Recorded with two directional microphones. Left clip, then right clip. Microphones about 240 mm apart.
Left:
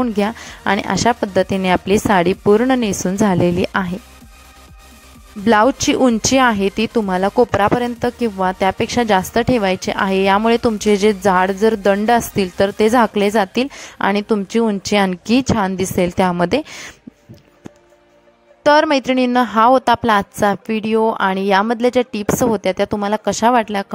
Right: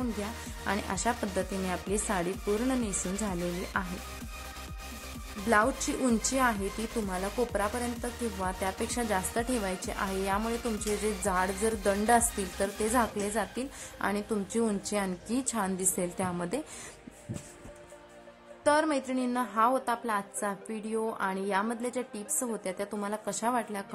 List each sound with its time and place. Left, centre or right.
0.2 s a woman's voice: left
5.5 s a woman's voice: left
18.6 s a woman's voice: left